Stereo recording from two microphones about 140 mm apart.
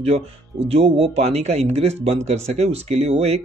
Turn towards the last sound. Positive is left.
turn(degrees=-45)  # may be behind; listen again after turning